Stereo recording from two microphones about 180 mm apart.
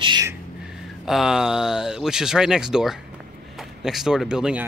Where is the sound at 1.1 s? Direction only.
Centre (ahead or behind).